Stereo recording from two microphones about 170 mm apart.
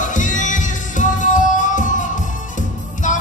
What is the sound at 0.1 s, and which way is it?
Music, 50° left (ahead or behind).